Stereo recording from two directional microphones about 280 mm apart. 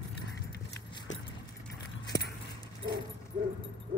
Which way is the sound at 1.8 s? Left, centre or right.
Left.